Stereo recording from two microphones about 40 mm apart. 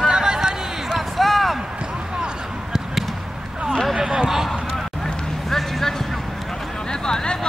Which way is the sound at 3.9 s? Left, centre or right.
Right.